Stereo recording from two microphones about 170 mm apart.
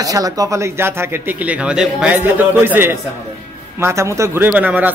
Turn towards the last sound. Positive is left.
turn(degrees=-10)  # may be behind; listen again after turning